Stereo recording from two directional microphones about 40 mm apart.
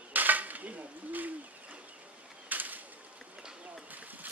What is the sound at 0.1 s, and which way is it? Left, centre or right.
Bird, right.